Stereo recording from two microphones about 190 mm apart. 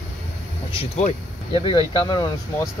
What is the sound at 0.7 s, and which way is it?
Speech, 35° left (ahead or behind).